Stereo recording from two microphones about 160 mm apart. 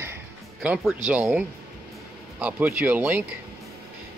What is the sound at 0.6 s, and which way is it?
Speech, centre (ahead or behind).